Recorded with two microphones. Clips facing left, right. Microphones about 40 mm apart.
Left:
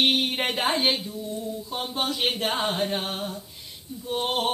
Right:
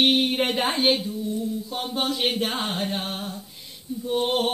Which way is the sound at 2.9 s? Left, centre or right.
Left.